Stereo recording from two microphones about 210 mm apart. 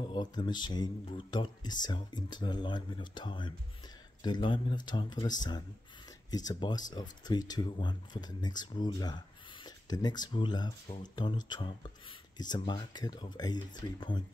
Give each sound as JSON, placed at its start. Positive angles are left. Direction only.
{"t": 0.1, "sound": "speech", "side_deg": 20}